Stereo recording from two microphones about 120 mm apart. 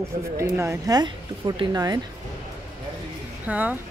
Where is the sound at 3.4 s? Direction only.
15° right (ahead or behind).